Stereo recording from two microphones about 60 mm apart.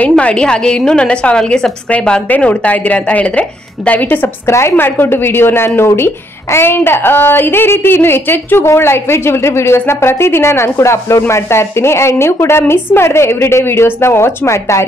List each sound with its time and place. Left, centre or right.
0.2 s a woman's voice: centre
4.5 s a woman's voice: left